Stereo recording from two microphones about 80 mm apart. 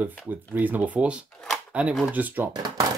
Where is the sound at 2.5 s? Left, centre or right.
Right.